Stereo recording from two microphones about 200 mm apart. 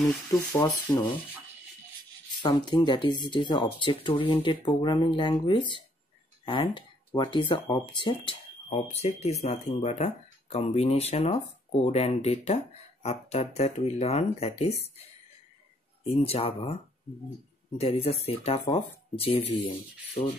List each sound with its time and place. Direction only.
0.5 s speech: 20° left (ahead or behind)
2.4 s speech: 20° left (ahead or behind)
16.0 s speech: 30° left (ahead or behind)
17.7 s speech: 30° left (ahead or behind)